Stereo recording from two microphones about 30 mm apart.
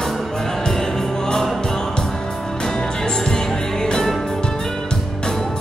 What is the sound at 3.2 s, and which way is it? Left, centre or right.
Music, left.